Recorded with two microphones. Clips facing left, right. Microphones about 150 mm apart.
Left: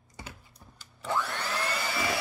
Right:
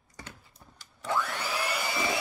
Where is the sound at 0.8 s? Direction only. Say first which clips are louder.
Even; 5° left (ahead or behind); by 2.2 s 15° right (ahead or behind).